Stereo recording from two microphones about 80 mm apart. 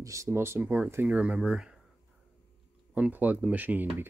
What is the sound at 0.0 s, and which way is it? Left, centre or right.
Speech, right.